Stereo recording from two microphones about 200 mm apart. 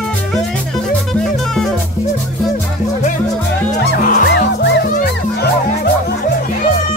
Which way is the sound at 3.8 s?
55° left (ahead or behind).